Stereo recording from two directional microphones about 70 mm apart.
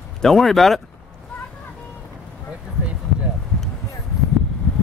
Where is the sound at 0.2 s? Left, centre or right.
Centre.